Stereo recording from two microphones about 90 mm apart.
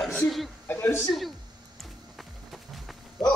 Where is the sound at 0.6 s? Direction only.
25° left (ahead or behind).